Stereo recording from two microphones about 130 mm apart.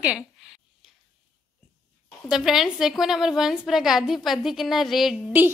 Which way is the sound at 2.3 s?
5° right (ahead or behind).